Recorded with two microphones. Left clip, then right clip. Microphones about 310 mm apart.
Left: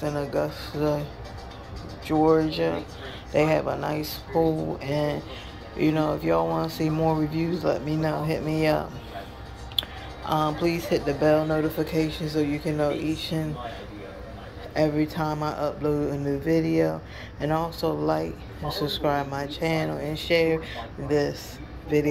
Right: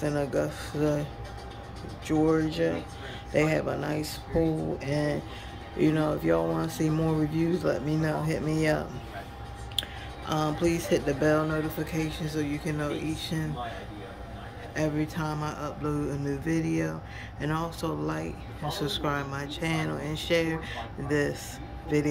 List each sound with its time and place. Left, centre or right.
0.0 s speech: centre
2.0 s speech: centre
14.7 s speech: centre
16.4 s speech: right
17.4 s speech: centre